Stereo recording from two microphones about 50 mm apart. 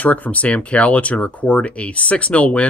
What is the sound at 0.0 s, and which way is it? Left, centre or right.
Speech, left.